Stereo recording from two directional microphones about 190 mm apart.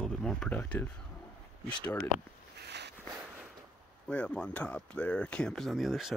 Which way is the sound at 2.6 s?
60° right (ahead or behind).